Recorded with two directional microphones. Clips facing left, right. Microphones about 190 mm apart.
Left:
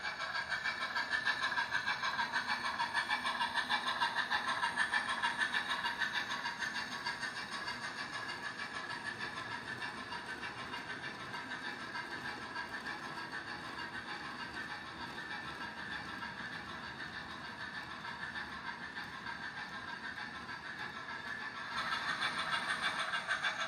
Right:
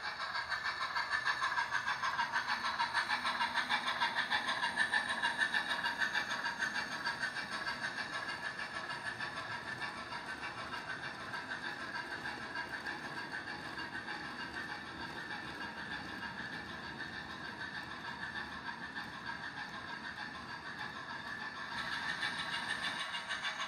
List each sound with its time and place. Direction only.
0.7 s train: 45° left (ahead or behind)
3.3 s vehicle: 10° right (ahead or behind); by 7.7 s 55° right (ahead or behind)
21.9 s vehicle: 65° left (ahead or behind)